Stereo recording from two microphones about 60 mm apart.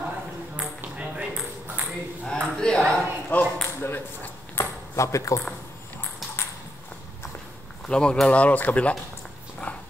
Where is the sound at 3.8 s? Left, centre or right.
Left.